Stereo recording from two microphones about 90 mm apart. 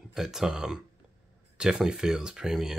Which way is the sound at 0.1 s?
5° right (ahead or behind).